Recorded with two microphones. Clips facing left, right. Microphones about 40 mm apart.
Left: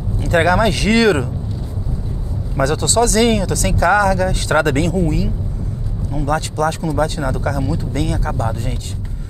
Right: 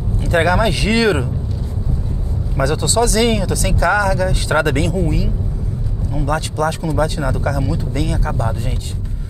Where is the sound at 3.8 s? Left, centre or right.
Left.